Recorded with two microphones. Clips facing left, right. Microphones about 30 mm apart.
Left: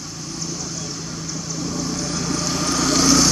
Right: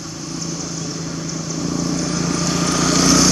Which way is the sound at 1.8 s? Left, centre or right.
Centre.